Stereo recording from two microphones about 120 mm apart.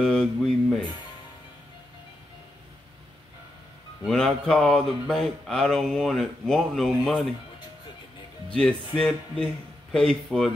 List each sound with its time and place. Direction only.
0.0 s speech: 5° left (ahead or behind)
4.0 s speech: 5° left (ahead or behind)
8.5 s speech: 5° left (ahead or behind)